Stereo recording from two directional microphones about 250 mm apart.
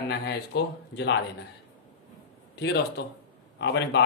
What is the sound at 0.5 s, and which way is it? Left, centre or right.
Speech, left.